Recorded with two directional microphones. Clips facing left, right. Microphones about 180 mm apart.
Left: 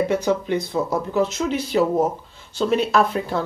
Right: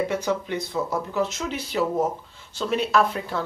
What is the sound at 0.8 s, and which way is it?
Speech, 25° left (ahead or behind).